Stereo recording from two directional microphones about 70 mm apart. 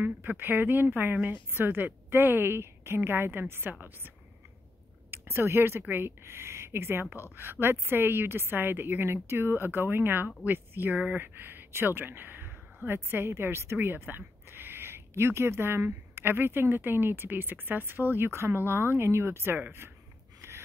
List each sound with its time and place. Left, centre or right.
0.0 s speech: right
5.1 s speech: right